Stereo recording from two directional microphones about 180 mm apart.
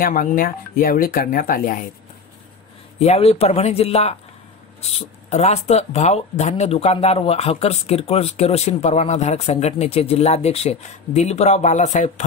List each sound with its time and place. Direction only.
0.0 s speech: 45° left (ahead or behind)
3.0 s speech: 35° left (ahead or behind)